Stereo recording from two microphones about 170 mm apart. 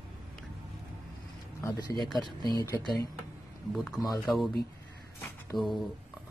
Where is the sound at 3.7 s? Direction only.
Centre (ahead or behind).